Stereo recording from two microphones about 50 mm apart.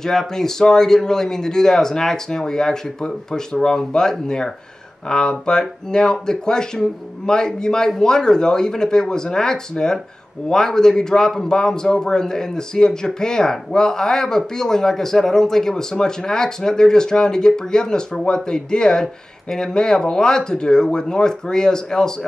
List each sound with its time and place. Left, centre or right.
0.0 s a man's voice: centre